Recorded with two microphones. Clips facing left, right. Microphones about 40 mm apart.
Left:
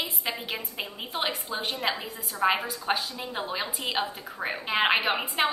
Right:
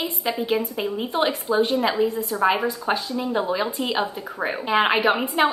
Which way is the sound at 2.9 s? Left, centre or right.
Centre.